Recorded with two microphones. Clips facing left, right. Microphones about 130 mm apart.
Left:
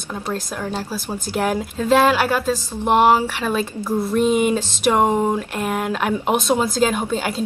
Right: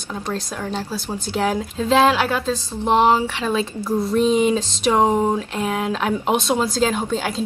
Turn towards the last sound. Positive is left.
turn(degrees=5)  # may be behind; listen again after turning